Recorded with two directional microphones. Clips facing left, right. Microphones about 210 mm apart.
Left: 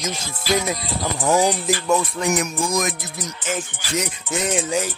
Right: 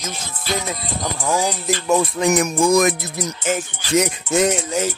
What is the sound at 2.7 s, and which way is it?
Music, 60° right (ahead or behind).